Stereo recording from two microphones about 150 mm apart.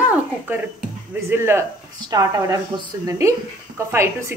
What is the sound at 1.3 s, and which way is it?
A woman's voice, 15° right (ahead or behind).